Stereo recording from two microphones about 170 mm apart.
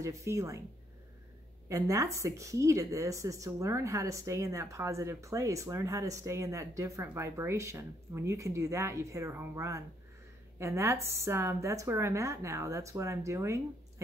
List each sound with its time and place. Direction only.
0.0 s speech: 15° right (ahead or behind)
1.7 s speech: 20° right (ahead or behind)